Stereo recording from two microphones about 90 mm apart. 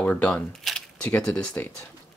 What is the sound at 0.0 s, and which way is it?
Speech, 15° left (ahead or behind).